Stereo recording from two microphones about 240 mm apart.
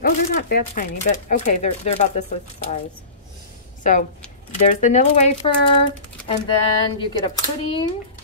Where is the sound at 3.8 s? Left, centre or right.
Left.